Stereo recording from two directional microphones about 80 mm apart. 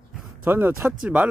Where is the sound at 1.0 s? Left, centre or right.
Centre.